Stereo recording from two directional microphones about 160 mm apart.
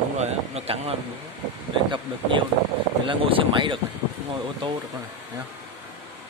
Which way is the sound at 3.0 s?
30° right (ahead or behind).